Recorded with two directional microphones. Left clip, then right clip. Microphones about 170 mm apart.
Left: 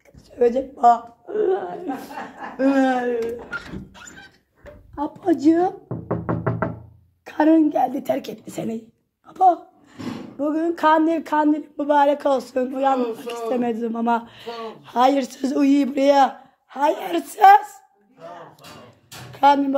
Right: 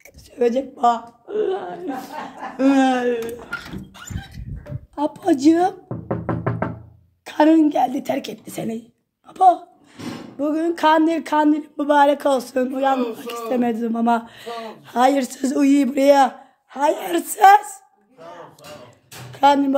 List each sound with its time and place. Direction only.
0.4 s a woman's voice: 15° right (ahead or behind); by 2.0 s 5° left (ahead or behind)
2.5 s a woman's voice: 20° right (ahead or behind)
4.9 s speech: 30° right (ahead or behind)
7.2 s a woman's voice: 25° right (ahead or behind)
9.3 s a woman's voice: 25° right (ahead or behind)
19.3 s a woman's voice: 20° right (ahead or behind)